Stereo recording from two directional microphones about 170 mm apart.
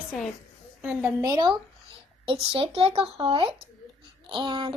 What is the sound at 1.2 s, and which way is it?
Speech, 25° right (ahead or behind).